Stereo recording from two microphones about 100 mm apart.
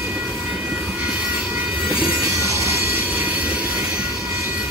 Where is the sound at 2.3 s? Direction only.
30° right (ahead or behind).